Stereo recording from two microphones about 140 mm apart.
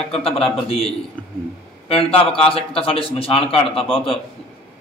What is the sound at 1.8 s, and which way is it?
A man's voice, 40° left (ahead or behind).